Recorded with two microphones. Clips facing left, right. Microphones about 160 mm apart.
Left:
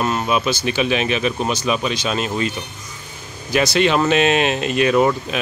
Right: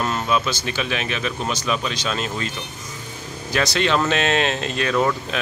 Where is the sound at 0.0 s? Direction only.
10° left (ahead or behind).